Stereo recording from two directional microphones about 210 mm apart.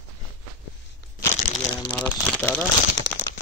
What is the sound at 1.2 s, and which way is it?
Crumpling, 20° left (ahead or behind).